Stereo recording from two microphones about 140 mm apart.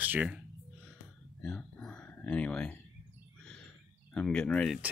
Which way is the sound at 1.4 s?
5° left (ahead or behind).